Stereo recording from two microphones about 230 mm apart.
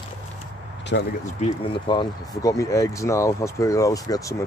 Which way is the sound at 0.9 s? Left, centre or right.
Left.